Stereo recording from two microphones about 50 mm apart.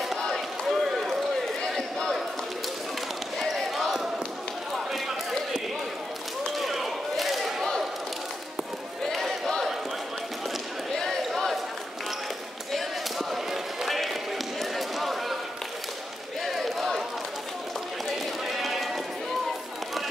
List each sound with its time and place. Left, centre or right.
0.0 s run: centre
3.3 s basketball bounce: centre
6.5 s a sound: centre
11.0 s basketball bounce: centre
12.7 s basketball bounce: centre
16.4 s crowd: centre
18.6 s sheep: centre